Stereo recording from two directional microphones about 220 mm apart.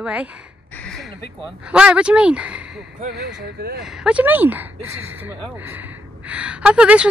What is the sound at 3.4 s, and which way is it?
Speech, 45° right (ahead or behind).